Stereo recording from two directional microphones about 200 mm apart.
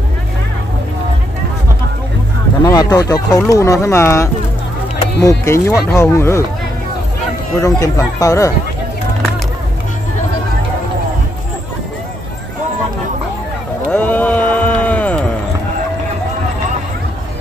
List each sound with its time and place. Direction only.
2.6 s speech: 20° left (ahead or behind)
7.6 s speech: 15° left (ahead or behind)
13.9 s music: 5° left (ahead or behind)